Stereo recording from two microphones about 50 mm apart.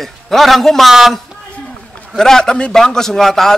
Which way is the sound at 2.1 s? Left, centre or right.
Centre.